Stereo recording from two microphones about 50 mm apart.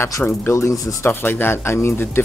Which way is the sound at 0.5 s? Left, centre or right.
Left.